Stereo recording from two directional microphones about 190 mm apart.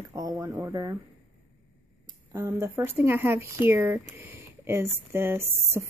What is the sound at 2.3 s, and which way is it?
Speech, 15° right (ahead or behind).